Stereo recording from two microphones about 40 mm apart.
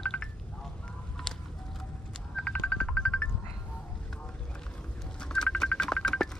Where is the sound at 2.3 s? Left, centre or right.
Left.